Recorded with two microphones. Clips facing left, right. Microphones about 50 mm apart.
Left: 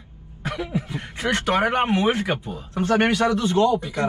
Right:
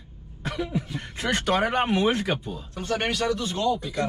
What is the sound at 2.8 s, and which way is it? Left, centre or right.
Speech, left.